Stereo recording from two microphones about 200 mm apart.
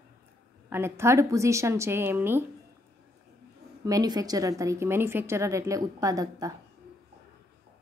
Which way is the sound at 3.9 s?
20° right (ahead or behind).